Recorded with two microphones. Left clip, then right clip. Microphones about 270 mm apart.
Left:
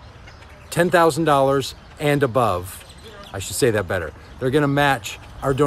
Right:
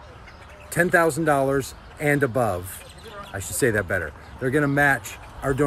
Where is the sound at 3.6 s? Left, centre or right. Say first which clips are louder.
Left 2 dB; centre.